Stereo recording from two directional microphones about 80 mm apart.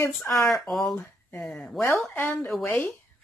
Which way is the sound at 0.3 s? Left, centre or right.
Left.